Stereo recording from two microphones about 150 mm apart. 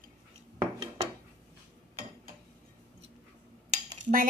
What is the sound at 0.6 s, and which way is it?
Dishes, 35° right (ahead or behind).